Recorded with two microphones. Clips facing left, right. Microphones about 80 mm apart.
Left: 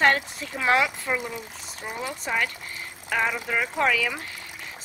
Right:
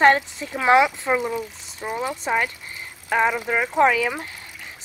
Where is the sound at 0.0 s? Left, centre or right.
Right.